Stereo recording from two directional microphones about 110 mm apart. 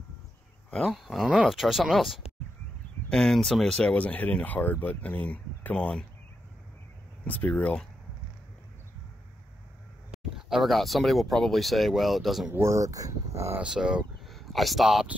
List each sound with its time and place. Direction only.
0.7 s speech: centre (ahead or behind)
7.2 s speech: 15° left (ahead or behind)
10.3 s speech: centre (ahead or behind)
12.4 s speech: 25° right (ahead or behind)
13.6 s speech: 5° right (ahead or behind)